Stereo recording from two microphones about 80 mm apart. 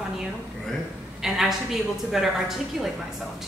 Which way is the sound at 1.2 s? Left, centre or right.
Centre.